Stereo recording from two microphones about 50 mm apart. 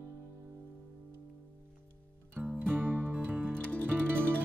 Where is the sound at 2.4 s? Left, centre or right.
Centre.